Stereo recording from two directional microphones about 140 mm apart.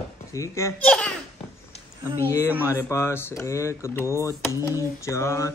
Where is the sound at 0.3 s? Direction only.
20° left (ahead or behind).